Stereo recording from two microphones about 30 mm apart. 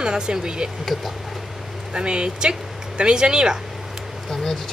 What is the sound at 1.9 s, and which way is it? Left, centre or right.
Speech, right.